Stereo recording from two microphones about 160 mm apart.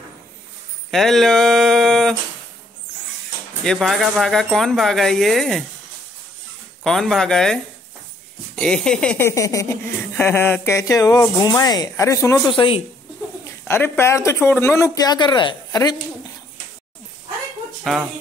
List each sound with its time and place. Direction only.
0.9 s a sound: centre (ahead or behind)
3.6 s speech: centre (ahead or behind)
6.8 s speech: centre (ahead or behind)
8.5 s speech: 5° left (ahead or behind)
9.3 s speech: 20° left (ahead or behind)
12.5 s speech: 35° left (ahead or behind)
13.7 s speech: 15° left (ahead or behind)
17.9 s speech: centre (ahead or behind)